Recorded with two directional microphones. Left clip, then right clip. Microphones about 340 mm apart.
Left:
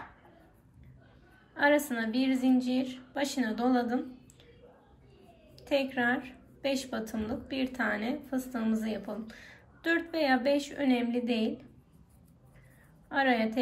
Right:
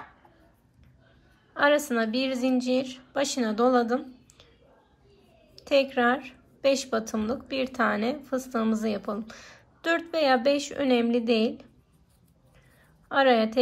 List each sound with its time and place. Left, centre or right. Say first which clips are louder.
1.5 s a woman's voice: right 4 dB; centre
5.6 s a woman's voice: right 7 dB; centre
13.1 s a woman's voice: right 6 dB; centre